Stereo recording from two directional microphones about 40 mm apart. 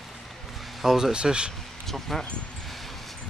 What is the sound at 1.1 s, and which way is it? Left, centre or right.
Speech, right.